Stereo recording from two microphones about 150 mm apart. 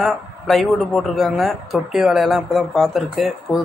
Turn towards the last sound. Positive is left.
turn(degrees=0)  # may be behind; listen again after turning